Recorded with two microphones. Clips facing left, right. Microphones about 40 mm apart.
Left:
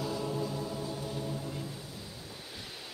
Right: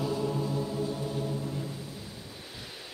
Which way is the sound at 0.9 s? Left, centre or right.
Right.